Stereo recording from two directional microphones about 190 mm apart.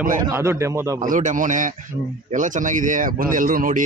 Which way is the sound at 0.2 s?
15° right (ahead or behind).